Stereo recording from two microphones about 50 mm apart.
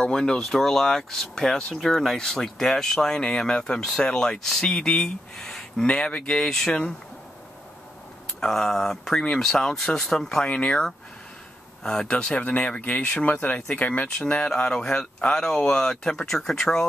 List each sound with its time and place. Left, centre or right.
0.0 s speech: centre
8.4 s speech: centre
10.5 s speech: left
12.4 s speech: left
14.1 s speech: left